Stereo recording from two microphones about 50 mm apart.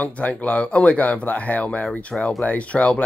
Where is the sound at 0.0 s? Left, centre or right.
Left.